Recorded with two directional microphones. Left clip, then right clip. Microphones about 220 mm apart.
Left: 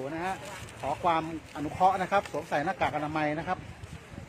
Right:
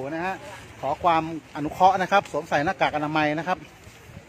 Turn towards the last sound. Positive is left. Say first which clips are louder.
# right 6 dB
turn(degrees=-40)  # may be behind; listen again after turning